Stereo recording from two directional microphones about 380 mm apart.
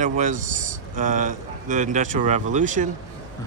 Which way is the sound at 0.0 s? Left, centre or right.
Centre.